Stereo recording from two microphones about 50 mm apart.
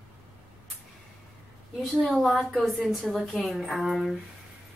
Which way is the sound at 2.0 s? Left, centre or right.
Centre.